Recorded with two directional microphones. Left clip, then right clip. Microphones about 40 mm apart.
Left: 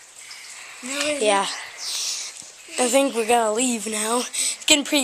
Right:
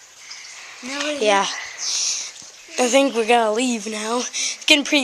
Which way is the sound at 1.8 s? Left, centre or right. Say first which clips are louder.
Right 6 dB; right.